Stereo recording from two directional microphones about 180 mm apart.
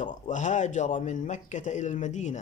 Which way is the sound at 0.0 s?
45° left (ahead or behind).